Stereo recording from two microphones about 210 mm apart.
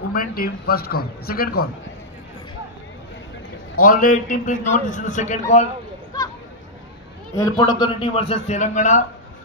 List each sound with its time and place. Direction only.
0.1 s speech: 45° left (ahead or behind)
3.8 s a man's voice: 40° left (ahead or behind)
6.1 s a sound: 15° left (ahead or behind)
7.3 s a man's voice: 15° left (ahead or behind); by 9.0 s 35° left (ahead or behind)